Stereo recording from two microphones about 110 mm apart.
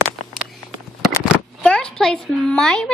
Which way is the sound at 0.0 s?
Centre (ahead or behind).